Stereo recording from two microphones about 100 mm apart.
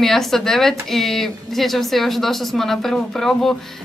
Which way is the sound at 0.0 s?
5° left (ahead or behind).